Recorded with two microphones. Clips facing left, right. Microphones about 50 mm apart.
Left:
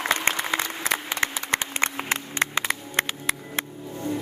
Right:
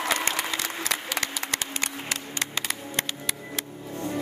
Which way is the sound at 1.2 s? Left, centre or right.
Left.